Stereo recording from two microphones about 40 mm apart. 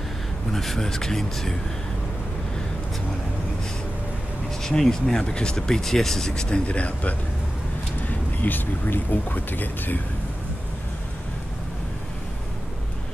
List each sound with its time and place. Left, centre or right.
0.5 s speech: centre
4.6 s speech: centre
5.2 s speech: left
6.7 s speech: left
8.4 s speech: left